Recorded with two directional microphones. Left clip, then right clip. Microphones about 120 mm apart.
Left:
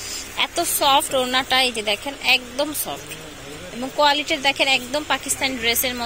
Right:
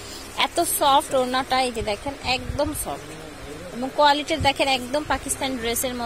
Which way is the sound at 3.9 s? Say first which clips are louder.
Left 1 dB; 20° right (ahead or behind).